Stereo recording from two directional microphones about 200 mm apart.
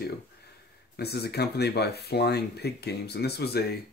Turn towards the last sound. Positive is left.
turn(degrees=50)  # may be behind; listen again after turning